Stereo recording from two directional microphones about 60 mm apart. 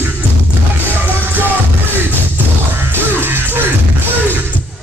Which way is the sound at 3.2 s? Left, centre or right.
Right.